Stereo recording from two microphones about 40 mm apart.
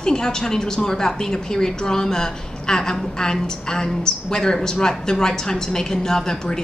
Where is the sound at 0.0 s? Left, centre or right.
Centre.